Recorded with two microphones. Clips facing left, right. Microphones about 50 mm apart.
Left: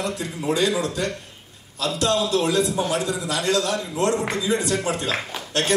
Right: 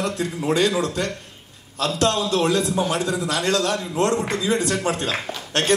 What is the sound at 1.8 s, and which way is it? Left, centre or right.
A man's voice, right.